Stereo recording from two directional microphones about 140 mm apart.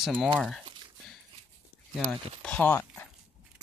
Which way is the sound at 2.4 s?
10° left (ahead or behind).